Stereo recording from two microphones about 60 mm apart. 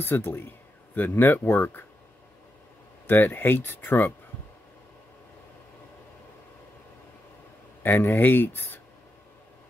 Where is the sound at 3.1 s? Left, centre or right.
Left.